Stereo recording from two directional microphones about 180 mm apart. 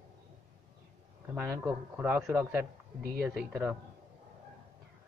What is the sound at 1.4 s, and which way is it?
Speech, 10° right (ahead or behind).